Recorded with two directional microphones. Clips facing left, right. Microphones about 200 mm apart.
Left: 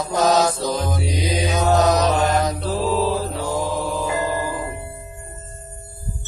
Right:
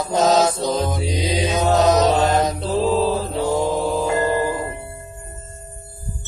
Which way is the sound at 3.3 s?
20° right (ahead or behind).